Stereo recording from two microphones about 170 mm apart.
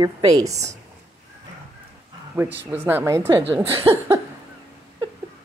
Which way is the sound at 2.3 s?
10° right (ahead or behind).